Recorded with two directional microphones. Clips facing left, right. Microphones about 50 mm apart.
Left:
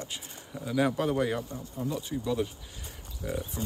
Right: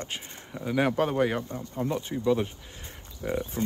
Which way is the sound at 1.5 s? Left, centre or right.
Right.